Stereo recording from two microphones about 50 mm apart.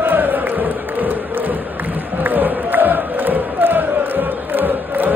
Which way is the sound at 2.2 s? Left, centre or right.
Right.